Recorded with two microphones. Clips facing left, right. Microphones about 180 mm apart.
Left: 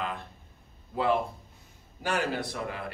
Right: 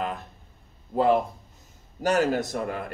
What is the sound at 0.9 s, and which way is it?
A man's voice, 40° right (ahead or behind).